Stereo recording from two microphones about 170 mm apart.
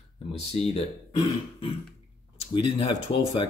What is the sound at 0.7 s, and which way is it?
Speech, 35° left (ahead or behind).